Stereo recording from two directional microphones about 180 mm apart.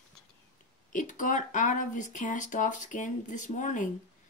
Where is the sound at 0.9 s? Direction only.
45° left (ahead or behind).